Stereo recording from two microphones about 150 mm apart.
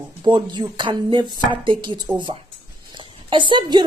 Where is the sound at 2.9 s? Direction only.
35° right (ahead or behind).